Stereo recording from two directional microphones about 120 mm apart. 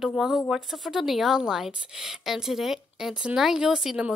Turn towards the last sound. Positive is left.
turn(degrees=-5)  # may be behind; listen again after turning